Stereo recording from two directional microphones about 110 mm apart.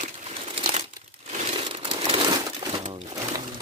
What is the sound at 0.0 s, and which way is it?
Crumpling, 80° right.